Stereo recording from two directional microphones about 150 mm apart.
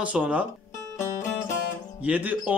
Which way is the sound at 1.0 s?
20° left (ahead or behind).